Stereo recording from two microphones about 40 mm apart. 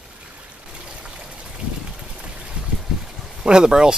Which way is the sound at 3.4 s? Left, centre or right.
Right.